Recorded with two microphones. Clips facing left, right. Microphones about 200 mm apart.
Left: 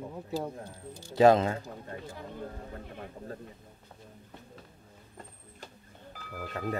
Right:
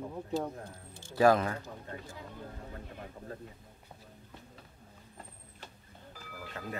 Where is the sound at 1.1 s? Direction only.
25° left (ahead or behind).